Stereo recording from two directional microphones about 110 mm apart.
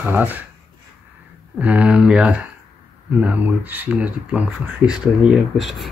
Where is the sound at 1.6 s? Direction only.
10° right (ahead or behind).